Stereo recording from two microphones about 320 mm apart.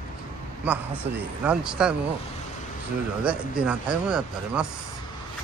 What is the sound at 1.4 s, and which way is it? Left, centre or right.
Speech, centre.